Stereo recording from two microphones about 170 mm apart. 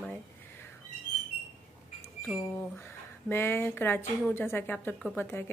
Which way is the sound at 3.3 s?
15° left (ahead or behind).